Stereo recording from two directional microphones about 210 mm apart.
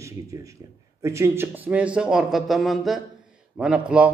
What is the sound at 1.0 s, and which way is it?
A man's voice, 15° right (ahead or behind).